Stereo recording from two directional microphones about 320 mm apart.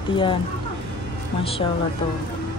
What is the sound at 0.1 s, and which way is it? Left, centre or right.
Speech, centre.